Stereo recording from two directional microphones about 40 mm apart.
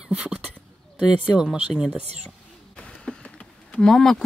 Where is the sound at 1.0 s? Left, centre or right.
Right.